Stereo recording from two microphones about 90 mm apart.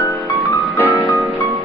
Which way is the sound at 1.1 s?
20° right (ahead or behind).